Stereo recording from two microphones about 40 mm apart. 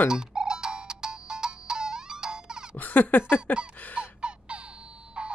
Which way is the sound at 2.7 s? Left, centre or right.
Left.